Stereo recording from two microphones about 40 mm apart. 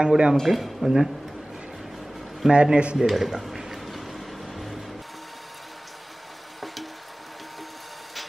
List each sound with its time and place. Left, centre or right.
0.0 s speech: centre
0.5 s speech: centre
0.8 s speech: centre
2.5 s speech: right
3.0 s speech: centre
3.4 s a sound: centre
3.8 s vehicle: centre
6.6 s a sound: centre